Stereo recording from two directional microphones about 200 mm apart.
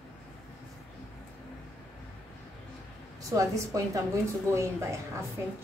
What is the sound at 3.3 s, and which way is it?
A woman's voice, 15° right (ahead or behind).